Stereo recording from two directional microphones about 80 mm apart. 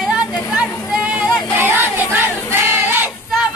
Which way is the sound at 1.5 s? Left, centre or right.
Right.